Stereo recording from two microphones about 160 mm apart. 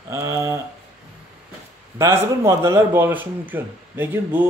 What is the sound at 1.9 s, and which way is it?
Speech, 15° right (ahead or behind).